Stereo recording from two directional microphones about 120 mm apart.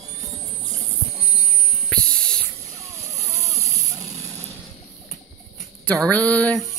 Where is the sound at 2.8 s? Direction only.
25° right (ahead or behind).